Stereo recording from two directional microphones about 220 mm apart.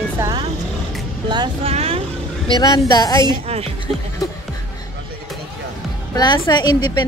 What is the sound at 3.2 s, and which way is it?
Speech, 25° right (ahead or behind).